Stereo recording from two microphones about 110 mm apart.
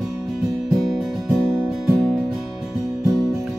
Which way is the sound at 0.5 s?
Centre (ahead or behind).